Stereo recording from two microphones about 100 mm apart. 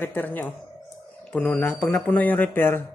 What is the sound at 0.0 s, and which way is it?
A man's voice, 20° left (ahead or behind).